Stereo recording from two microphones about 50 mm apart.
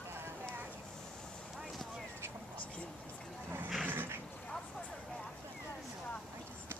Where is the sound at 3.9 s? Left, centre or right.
Right.